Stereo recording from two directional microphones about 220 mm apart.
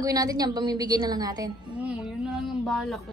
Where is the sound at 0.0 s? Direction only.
15° right (ahead or behind).